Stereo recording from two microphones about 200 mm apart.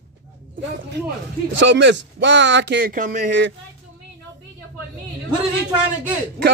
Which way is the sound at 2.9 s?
40° right (ahead or behind).